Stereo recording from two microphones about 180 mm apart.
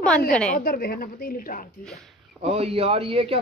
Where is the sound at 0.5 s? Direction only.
55° left (ahead or behind).